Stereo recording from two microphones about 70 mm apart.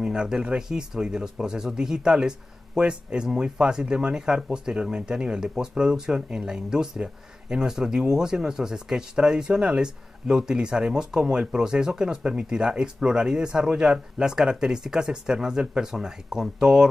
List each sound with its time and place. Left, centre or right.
0.0 s speech: centre